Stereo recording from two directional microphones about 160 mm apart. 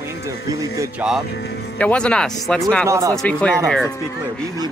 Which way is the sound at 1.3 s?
90° left.